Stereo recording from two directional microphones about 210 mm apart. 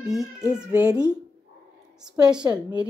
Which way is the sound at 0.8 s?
20° right (ahead or behind).